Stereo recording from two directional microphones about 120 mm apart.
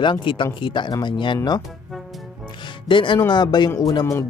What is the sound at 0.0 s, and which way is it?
Speech, 40° left (ahead or behind).